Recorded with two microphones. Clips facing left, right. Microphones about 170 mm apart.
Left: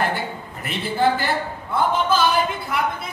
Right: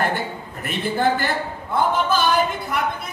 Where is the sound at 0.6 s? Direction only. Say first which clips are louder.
Even; 50° right (ahead or behind).